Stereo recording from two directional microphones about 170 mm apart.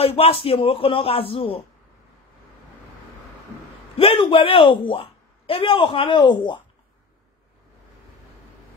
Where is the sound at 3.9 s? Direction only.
35° left (ahead or behind).